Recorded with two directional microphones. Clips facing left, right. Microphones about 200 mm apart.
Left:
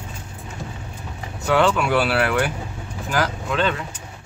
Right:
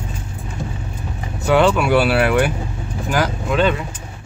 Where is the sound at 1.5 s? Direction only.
15° right (ahead or behind).